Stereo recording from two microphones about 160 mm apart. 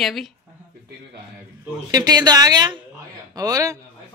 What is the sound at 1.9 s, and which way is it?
A woman's voice, 25° right (ahead or behind).